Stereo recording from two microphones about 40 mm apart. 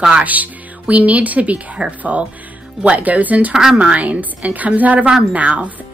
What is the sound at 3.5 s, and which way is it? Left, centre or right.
Speech, centre.